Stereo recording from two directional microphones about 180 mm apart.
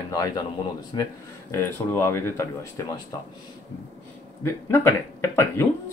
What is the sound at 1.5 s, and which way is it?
Speech, 15° left (ahead or behind).